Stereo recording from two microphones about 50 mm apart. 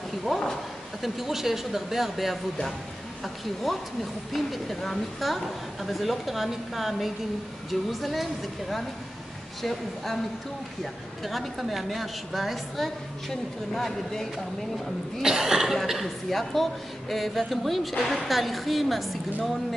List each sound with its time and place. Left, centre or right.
0.2 s a woman's voice: centre
15.2 s a woman's voice: centre